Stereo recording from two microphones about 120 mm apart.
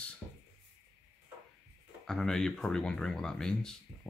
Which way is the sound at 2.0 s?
5° left (ahead or behind).